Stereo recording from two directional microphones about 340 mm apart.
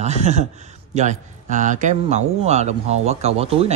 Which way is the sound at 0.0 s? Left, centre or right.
Centre.